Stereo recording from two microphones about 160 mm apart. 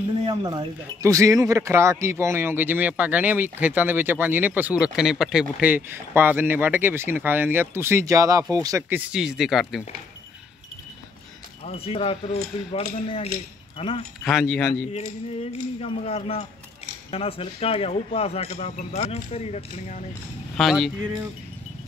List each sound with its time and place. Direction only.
0.3 s speech: 25° right (ahead or behind); by 9.8 s centre (ahead or behind)
11.6 s speech: 40° left (ahead or behind)
14.2 s speech: centre (ahead or behind)
15.8 s speech: 40° left (ahead or behind)
20.5 s speech: centre (ahead or behind)